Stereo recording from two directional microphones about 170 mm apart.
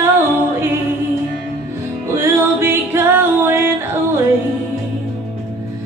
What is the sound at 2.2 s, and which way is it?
Music, 15° right (ahead or behind).